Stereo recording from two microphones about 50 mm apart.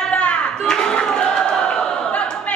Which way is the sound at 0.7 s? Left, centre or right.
Centre.